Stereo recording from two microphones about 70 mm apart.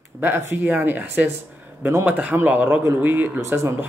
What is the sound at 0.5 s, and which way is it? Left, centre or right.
Speech, right.